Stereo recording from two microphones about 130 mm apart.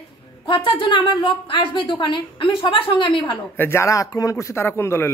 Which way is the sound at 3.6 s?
20° left (ahead or behind).